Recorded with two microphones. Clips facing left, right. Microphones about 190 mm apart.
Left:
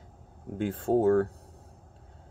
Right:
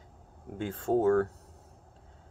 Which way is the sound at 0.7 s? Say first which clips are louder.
Left 2 dB; 30° left (ahead or behind).